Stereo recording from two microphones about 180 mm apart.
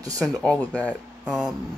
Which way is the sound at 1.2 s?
5° right (ahead or behind).